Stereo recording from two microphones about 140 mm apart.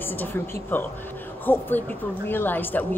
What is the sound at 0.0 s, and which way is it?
A woman's voice, 15° left (ahead or behind).